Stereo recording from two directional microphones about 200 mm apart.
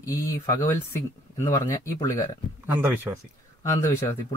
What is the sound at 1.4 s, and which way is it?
Speech, 20° left (ahead or behind).